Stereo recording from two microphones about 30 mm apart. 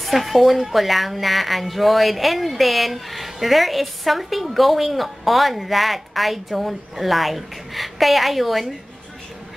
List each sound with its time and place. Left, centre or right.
0.0 s speech: centre